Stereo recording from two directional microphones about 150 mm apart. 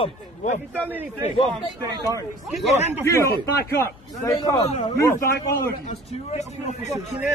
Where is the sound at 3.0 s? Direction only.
20° left (ahead or behind).